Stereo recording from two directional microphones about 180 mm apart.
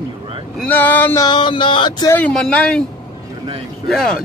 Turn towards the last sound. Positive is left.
turn(degrees=5)  # may be behind; listen again after turning